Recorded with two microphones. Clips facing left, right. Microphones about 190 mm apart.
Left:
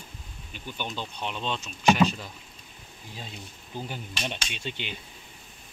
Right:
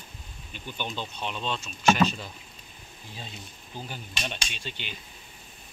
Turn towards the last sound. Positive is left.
turn(degrees=15)  # may be behind; listen again after turning